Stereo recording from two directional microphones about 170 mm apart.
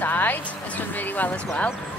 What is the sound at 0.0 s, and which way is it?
Speech, 10° left (ahead or behind).